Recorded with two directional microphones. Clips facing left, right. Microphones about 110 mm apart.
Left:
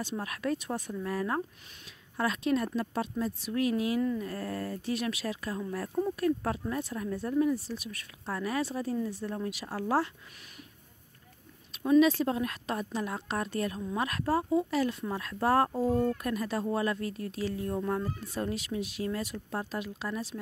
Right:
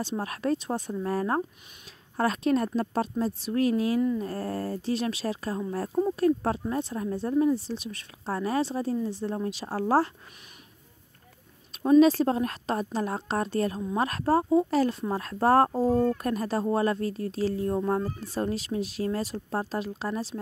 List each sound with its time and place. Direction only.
0.0 s speech: 30° right (ahead or behind)
12.0 s speech: 40° right (ahead or behind)